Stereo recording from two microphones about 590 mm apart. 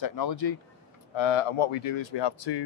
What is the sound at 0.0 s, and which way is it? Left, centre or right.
Speech, left.